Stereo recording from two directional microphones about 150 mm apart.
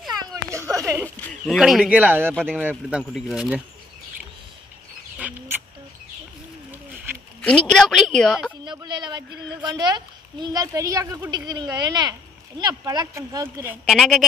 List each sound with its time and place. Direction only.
0.2 s a sound: 20° right (ahead or behind)
1.5 s speech: centre (ahead or behind)
5.2 s bird: 10° right (ahead or behind)
7.4 s a woman's voice: 5° left (ahead or behind)
8.6 s speech: 30° right (ahead or behind)
13.8 s a woman's voice: centre (ahead or behind)